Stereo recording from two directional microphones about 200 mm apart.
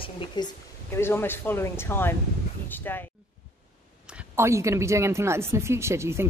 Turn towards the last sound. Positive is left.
turn(degrees=-15)  # may be behind; listen again after turning